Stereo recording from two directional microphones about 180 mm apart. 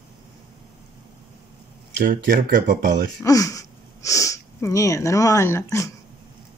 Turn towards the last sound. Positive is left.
turn(degrees=15)  # may be behind; listen again after turning